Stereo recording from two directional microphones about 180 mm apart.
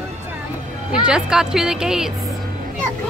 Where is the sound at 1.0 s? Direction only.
5° right (ahead or behind).